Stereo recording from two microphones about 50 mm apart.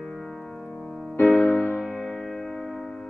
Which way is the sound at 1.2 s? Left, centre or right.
Left.